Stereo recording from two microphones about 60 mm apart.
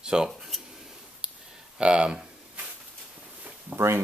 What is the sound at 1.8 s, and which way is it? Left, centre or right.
Speech, centre.